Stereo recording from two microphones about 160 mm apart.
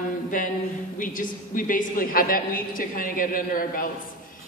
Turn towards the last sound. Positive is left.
turn(degrees=60)  # may be behind; listen again after turning